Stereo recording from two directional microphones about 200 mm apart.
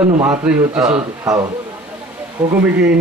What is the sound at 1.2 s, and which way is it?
Speech, 15° right (ahead or behind).